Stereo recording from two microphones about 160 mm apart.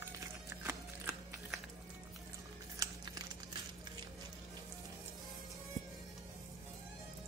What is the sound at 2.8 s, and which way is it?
Crumpling, 25° right (ahead or behind).